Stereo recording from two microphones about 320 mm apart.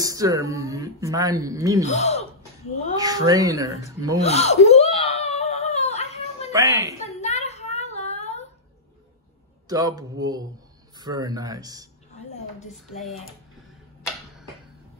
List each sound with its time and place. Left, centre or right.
0.0 s speech: centre
1.9 s speech: left
3.0 s speech: centre
4.2 s whimper: centre
6.5 s speech: centre
7.0 s a sound: centre
9.7 s speech: centre
12.7 s speech: centre